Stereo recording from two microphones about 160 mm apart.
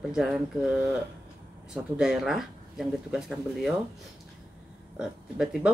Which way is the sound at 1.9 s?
5° right (ahead or behind).